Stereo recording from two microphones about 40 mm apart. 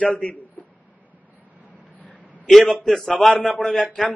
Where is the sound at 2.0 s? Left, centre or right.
Left.